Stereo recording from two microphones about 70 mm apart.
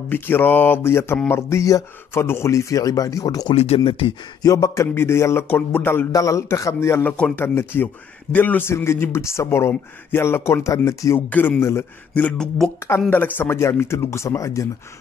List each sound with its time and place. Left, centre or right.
0.1 s a man's voice: left
2.1 s speech: left
4.4 s a sound: left
4.8 s a man's voice: left
5.5 s speech: left
6.1 s speech: left
7.0 s speech: left
7.3 s a man's voice: left
11.1 s speech: left
12.1 s a sound: centre
12.4 s speech: centre
13.1 s speech: left